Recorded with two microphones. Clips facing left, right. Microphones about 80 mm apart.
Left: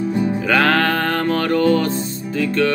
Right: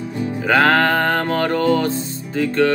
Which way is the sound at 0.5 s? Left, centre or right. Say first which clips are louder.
Right 3 dB; right.